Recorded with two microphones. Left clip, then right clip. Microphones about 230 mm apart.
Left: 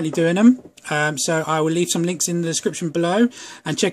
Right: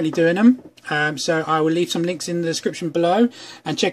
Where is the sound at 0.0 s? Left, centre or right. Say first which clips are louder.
Right 1 dB; centre.